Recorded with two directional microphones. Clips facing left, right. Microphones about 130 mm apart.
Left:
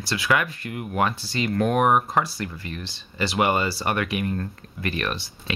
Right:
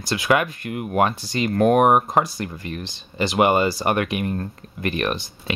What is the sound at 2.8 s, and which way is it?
Speech, 20° right (ahead or behind).